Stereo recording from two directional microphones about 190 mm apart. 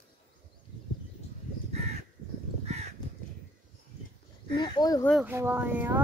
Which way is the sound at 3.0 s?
20° left (ahead or behind).